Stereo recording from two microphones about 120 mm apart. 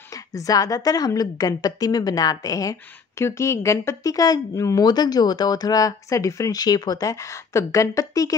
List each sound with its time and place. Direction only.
0.3 s a woman's voice: 30° left (ahead or behind)